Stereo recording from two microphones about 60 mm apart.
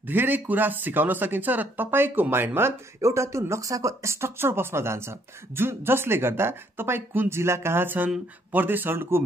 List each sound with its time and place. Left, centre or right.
0.0 s speech: right
3.0 s speech: right